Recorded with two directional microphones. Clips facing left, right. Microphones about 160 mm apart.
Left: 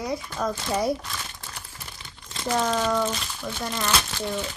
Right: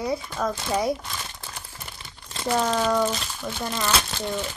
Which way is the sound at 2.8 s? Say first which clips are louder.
Right 2 dB; 10° right (ahead or behind).